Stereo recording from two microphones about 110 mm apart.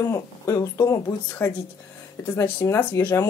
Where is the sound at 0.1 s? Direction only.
30° left (ahead or behind).